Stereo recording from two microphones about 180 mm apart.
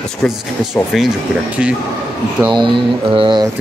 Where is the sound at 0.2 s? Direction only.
Centre (ahead or behind).